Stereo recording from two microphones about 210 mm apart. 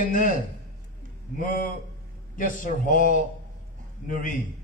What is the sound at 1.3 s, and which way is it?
A man's voice, 40° left (ahead or behind).